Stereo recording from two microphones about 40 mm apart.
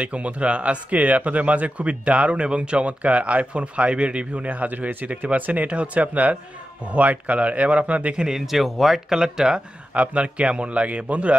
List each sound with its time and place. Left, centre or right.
0.0 s speech: right
4.5 s speech: right
8.3 s speech: centre
9.2 s speech: centre
9.9 s speech: right